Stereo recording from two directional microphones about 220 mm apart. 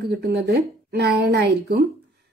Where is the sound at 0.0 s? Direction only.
50° right (ahead or behind).